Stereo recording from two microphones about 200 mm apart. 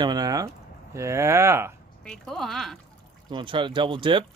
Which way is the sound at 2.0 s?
5° left (ahead or behind).